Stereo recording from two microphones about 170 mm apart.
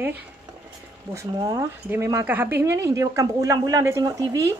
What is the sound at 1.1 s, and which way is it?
Speech, 20° right (ahead or behind).